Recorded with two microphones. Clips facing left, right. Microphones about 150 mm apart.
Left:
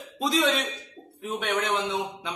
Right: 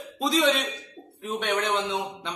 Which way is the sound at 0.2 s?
Centre (ahead or behind).